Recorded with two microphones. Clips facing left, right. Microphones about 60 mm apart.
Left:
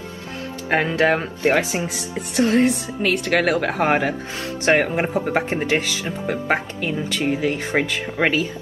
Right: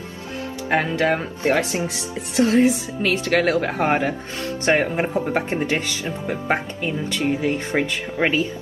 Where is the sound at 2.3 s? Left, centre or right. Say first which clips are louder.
Right 1 dB; centre.